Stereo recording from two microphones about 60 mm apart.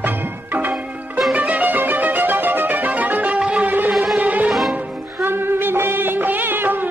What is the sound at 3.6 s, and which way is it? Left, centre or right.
Music, right.